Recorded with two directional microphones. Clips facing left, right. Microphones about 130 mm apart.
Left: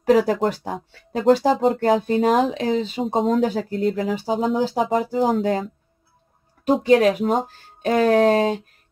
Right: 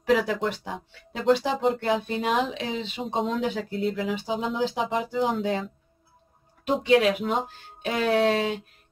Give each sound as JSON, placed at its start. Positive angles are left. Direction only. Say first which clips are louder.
{"t": 0.0, "sound": "speech", "louder": "left 6 dB", "side_deg": 40}
{"t": 6.8, "sound": "speech", "louder": "left 4 dB", "side_deg": 40}